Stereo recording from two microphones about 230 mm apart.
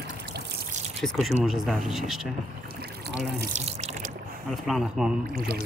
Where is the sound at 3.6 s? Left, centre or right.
Right.